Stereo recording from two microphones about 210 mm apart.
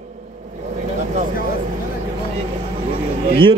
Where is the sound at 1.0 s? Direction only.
35° right (ahead or behind).